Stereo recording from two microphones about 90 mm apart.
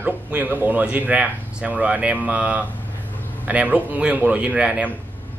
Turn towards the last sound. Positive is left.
turn(degrees=-10)  # may be behind; listen again after turning